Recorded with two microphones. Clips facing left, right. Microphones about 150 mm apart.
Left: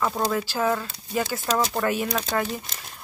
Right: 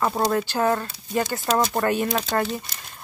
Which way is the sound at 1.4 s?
20° right (ahead or behind).